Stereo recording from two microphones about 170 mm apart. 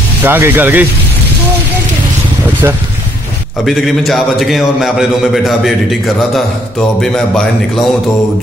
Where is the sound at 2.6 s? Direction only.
20° right (ahead or behind).